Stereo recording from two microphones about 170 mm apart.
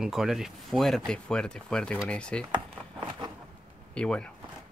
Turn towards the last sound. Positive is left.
turn(degrees=5)  # may be behind; listen again after turning